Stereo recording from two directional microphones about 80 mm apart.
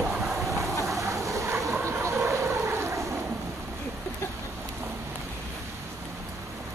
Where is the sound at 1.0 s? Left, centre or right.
Right.